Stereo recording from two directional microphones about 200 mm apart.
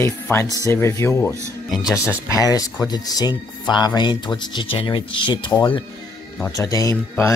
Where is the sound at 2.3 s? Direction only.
15° left (ahead or behind).